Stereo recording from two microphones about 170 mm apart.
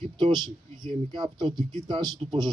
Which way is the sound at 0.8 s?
25° right (ahead or behind).